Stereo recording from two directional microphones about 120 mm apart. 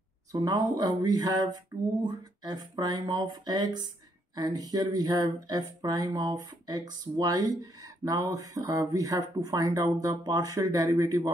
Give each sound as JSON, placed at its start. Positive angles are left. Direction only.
{"t": 0.3, "sound": "speech", "side_deg": -30}